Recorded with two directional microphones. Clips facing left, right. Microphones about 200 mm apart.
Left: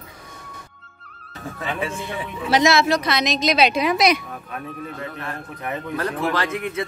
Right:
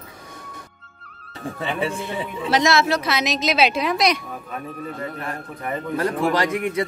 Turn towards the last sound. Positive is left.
turn(degrees=-15)  # may be behind; listen again after turning